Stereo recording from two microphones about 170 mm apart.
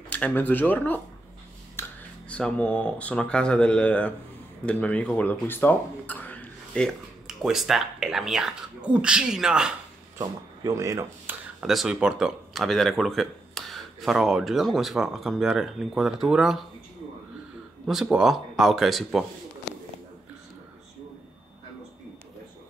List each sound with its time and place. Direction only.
0.1 s speech: 10° left (ahead or behind)
10.1 s speech: 20° right (ahead or behind)
11.6 s speech: centre (ahead or behind)
17.8 s speech: centre (ahead or behind)